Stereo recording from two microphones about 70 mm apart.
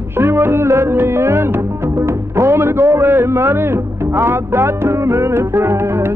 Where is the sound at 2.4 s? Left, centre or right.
Right.